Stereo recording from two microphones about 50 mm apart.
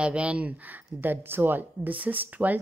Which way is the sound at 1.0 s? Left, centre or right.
Right.